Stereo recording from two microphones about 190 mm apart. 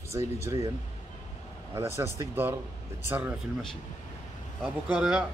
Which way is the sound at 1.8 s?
15° right (ahead or behind).